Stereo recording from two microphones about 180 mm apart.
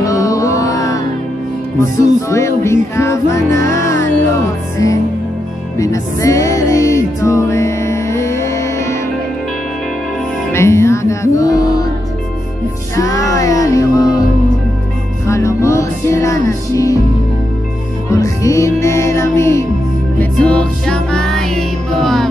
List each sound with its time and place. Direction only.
0.0 s music: 20° left (ahead or behind)
5.8 s music: 20° left (ahead or behind)
10.5 s music: 15° left (ahead or behind)
12.9 s music: 20° left (ahead or behind)
18.1 s music: 15° left (ahead or behind); by 22.3 s centre (ahead or behind)